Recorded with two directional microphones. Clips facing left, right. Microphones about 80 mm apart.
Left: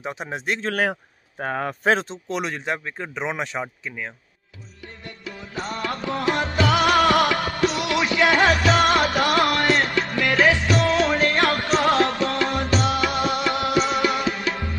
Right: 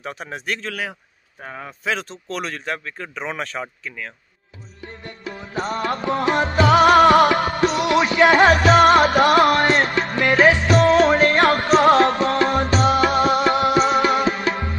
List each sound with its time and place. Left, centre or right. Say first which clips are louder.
0.0 s speech: left 1 dB; left
0.6 s a man's voice: left 5 dB; left
1.4 s speech: left 8 dB; left
1.9 s speech: left 3 dB; left
4.8 s music: right 4 dB; right
7.1 s music: right 5 dB; right
11.4 s music: right 4 dB; right
11.7 s music: right 7 dB; right
13.5 s music: right 5 dB; right
13.7 s music: right 4 dB; right